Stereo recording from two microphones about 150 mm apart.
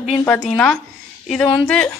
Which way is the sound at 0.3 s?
5° left (ahead or behind).